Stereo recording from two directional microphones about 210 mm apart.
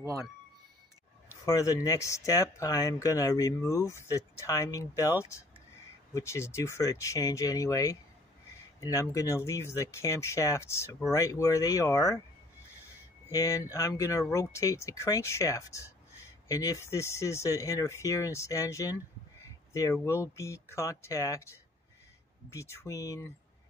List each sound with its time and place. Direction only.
1.4 s speech: 15° left (ahead or behind)
13.3 s speech: 15° left (ahead or behind)